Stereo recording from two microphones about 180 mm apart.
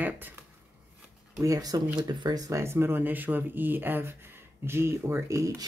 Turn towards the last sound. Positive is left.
turn(degrees=-15)  # may be behind; listen again after turning